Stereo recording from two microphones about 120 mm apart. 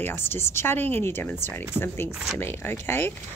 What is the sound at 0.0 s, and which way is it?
Speech, 20° left (ahead or behind).